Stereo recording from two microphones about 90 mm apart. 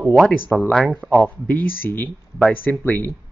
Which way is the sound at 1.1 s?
15° left (ahead or behind).